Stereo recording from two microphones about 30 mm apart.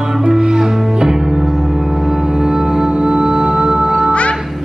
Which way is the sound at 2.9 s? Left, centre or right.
Right.